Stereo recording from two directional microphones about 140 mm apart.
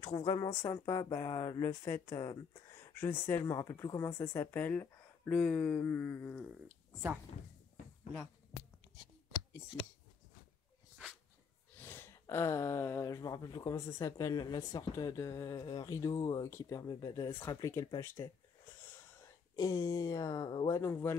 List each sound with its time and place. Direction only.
0.0 s speech: 40° left (ahead or behind)
0.6 s speech: 20° left (ahead or behind)
11.8 s speech: 15° left (ahead or behind)
19.5 s speech: 25° left (ahead or behind)